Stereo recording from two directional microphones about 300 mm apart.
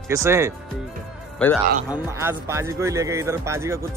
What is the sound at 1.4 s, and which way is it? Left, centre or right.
Speech, centre.